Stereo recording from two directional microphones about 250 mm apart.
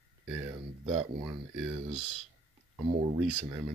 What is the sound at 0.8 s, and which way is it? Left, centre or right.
Speech, right.